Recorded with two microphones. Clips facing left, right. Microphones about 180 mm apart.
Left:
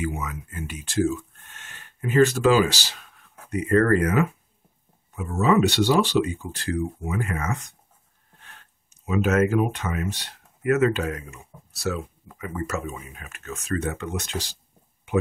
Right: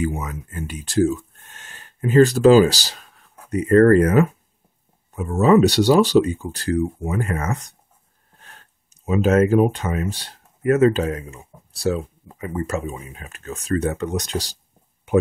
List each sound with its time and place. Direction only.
0.0 s speech: 35° right (ahead or behind)